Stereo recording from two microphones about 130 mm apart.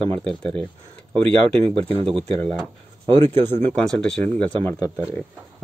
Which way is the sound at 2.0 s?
50° right (ahead or behind).